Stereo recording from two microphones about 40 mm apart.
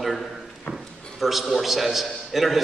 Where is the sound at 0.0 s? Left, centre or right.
Centre.